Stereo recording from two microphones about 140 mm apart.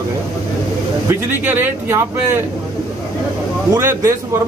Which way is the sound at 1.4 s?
15° right (ahead or behind).